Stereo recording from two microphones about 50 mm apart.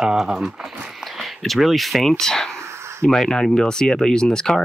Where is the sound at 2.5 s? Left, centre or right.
Right.